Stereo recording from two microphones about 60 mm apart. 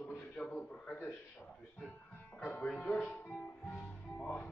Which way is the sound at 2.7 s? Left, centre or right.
Left.